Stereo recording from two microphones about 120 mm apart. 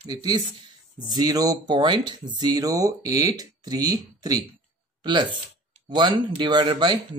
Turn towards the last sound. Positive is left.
turn(degrees=-40)  # may be behind; listen again after turning